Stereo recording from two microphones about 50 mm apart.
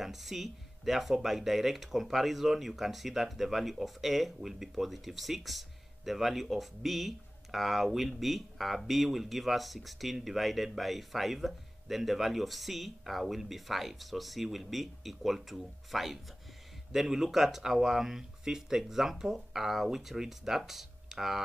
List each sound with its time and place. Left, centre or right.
0.0 s speech: centre